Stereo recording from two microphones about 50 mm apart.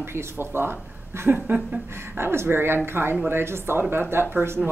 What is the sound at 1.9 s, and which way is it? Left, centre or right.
A woman's voice, right.